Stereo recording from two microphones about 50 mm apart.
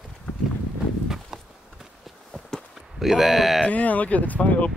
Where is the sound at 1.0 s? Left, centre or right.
Centre.